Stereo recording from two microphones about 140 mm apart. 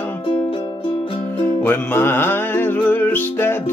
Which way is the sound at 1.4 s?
15° left (ahead or behind).